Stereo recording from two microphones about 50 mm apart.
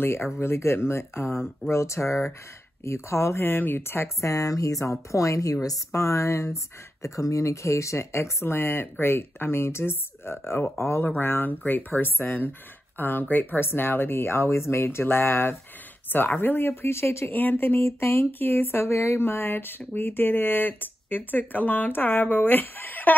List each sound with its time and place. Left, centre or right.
0.0 s speech: left
1.7 s speech: left
3.4 s speech: left
4.2 s speech: left
5.9 s speech: left
17.3 s speech: left